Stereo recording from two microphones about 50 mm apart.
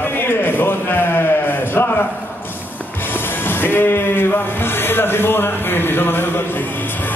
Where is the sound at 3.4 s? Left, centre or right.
Left.